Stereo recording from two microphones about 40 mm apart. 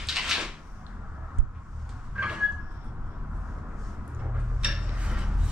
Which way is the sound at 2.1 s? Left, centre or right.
Right.